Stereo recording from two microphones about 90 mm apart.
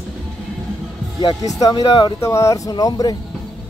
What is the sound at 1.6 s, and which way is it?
Speech, 45° left (ahead or behind).